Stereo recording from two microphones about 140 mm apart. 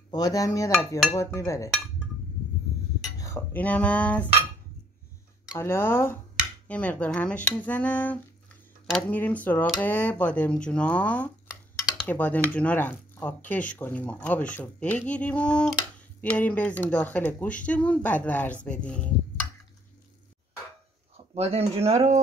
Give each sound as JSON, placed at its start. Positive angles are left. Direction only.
{"t": 0.1, "sound": "speech", "side_deg": 25}
{"t": 0.7, "sound": "speech", "side_deg": 5}
{"t": 1.1, "sound": "speech", "side_deg": 20}
{"t": 3.2, "sound": "speech", "side_deg": 20}
{"t": 5.6, "sound": "speech", "side_deg": 15}
{"t": 21.4, "sound": "speech", "side_deg": -45}